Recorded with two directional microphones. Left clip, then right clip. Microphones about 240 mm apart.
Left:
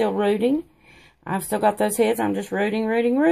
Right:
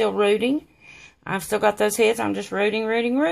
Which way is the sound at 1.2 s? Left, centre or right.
Right.